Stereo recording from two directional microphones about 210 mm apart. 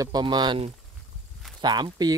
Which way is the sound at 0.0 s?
20° right (ahead or behind).